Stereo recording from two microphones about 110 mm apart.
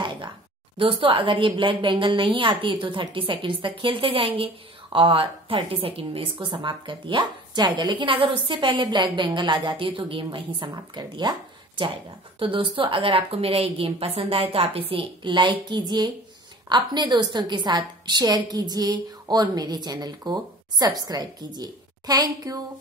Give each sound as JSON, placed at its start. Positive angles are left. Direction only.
{"t": 0.7, "sound": "a woman's voice", "side_deg": -55}
{"t": 12.4, "sound": "a woman's voice", "side_deg": -55}